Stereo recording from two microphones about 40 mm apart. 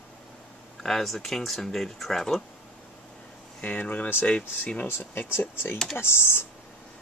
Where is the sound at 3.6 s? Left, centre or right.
Left.